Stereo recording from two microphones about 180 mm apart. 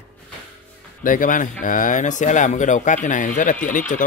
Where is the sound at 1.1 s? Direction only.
45° left (ahead or behind).